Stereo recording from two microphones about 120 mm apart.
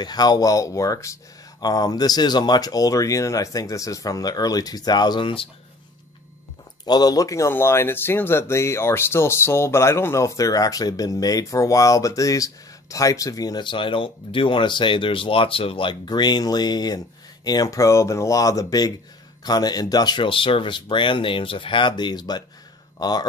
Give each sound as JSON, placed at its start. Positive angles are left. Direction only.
{"t": 0.0, "sound": "speech", "side_deg": 35}
{"t": 6.9, "sound": "speech", "side_deg": 35}